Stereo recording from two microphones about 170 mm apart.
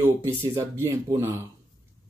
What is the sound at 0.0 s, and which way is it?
Speech, 15° right (ahead or behind).